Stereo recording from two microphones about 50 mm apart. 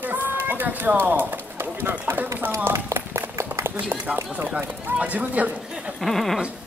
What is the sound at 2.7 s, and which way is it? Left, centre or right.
Run, right.